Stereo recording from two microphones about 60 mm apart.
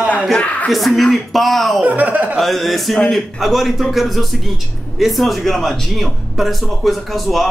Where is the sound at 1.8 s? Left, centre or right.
Right.